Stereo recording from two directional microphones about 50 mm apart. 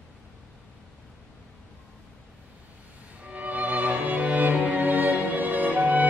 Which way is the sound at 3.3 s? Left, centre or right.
Right.